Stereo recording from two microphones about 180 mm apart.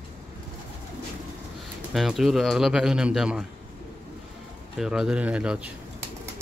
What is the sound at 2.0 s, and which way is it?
Speech, centre (ahead or behind).